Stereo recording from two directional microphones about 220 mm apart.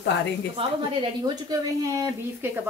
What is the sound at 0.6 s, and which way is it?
Speech, 25° right (ahead or behind).